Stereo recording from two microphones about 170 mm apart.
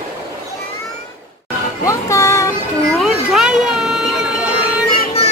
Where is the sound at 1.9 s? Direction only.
15° left (ahead or behind).